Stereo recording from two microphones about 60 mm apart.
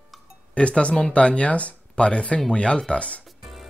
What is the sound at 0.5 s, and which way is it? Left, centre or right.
Speech, centre.